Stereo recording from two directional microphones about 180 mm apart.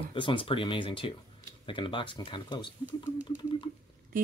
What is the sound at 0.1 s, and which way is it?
Speech, 30° left (ahead or behind).